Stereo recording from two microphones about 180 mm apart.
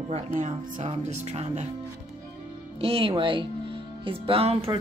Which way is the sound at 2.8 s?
30° right (ahead or behind).